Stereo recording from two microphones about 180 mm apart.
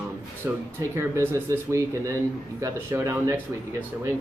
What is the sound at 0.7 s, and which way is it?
A man's voice, 15° right (ahead or behind).